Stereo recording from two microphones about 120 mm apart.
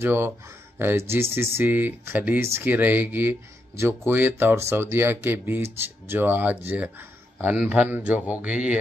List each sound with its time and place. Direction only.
0.0 s speech: 20° right (ahead or behind)